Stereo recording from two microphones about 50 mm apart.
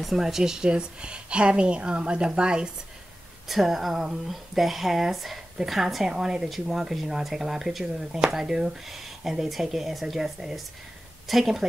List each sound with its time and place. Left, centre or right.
0.0 s a woman's voice: centre
3.4 s speech: centre